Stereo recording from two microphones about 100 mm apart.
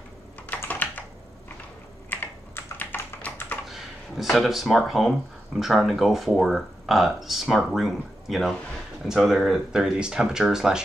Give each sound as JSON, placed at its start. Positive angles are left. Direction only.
{"t": 0.5, "sound": "computer keyboard", "side_deg": 15}
{"t": 2.0, "sound": "typing", "side_deg": 20}
{"t": 3.7, "sound": "speech", "side_deg": 0}